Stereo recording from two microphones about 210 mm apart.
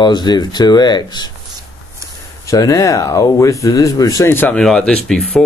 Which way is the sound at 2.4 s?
15° left (ahead or behind).